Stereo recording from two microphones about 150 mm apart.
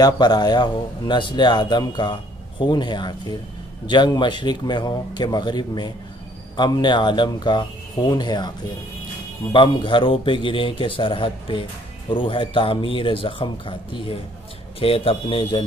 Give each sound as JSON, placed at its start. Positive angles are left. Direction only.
{"t": 0.0, "sound": "a man's voice", "side_deg": 25}
{"t": 9.5, "sound": "a man's voice", "side_deg": 35}